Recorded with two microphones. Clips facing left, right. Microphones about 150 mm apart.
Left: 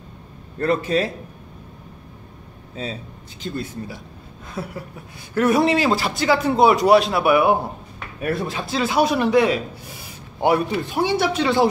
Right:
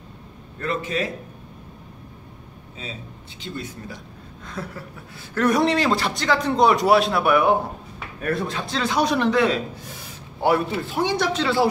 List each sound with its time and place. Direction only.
0.6 s a man's voice: 35° left (ahead or behind)
3.4 s a man's voice: 45° left (ahead or behind)
4.5 s speech: 10° left (ahead or behind)